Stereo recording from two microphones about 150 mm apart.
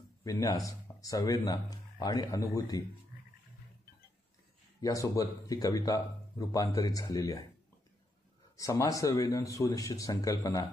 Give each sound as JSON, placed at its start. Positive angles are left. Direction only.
{"t": 0.2, "sound": "speech", "side_deg": 25}
{"t": 4.8, "sound": "speech", "side_deg": 20}
{"t": 8.5, "sound": "speech", "side_deg": 20}